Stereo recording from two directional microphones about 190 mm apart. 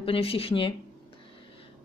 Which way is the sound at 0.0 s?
30° left (ahead or behind).